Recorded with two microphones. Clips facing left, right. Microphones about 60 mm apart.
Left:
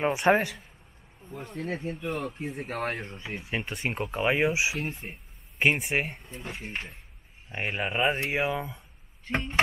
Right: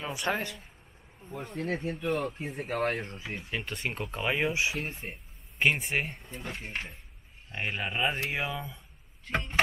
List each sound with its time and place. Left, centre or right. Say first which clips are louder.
0.1 s speech: left 6 dB; left
1.2 s speech: even; centre
3.4 s speech: left 4 dB; centre
4.7 s speech: left 2 dB; centre
5.7 s speech: left 3 dB; centre
6.1 s speech: even; centre
7.5 s speech: left 3 dB; centre
9.3 s speech: left 2 dB; centre